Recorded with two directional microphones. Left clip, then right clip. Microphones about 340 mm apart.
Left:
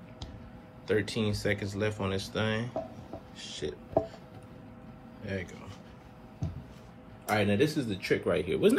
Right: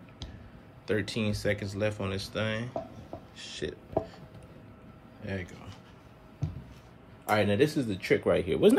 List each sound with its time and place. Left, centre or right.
0.8 s speech: centre
5.2 s speech: centre
7.2 s speech: centre